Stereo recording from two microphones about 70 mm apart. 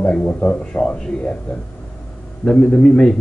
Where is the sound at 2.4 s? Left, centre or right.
Centre.